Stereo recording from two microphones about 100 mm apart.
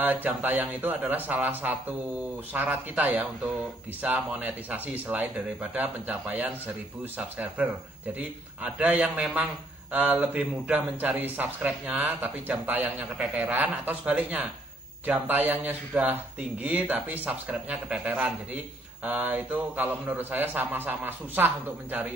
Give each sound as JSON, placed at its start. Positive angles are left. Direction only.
{"t": 0.0, "sound": "a man's voice", "side_deg": -15}
{"t": 8.7, "sound": "a man's voice", "side_deg": -15}